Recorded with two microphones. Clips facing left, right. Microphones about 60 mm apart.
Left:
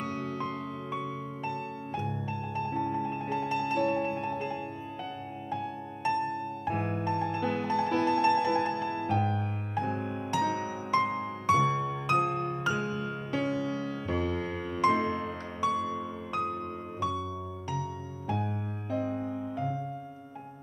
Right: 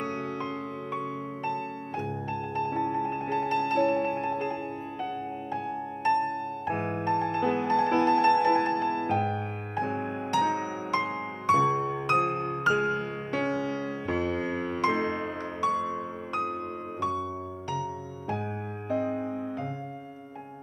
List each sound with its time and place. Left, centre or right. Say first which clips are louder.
0.0 s music: right 2 dB; right
6.0 s music: right 4 dB; right
18.3 s music: even; right